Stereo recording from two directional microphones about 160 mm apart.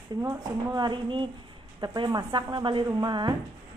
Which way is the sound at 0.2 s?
20° right (ahead or behind).